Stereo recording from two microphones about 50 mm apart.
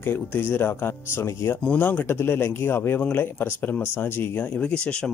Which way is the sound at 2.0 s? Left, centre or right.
Left.